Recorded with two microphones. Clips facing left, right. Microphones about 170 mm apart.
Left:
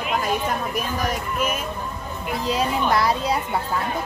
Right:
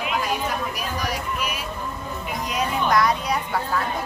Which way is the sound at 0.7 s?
50° left (ahead or behind).